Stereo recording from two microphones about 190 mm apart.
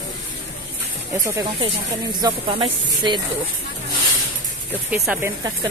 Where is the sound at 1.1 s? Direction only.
15° right (ahead or behind).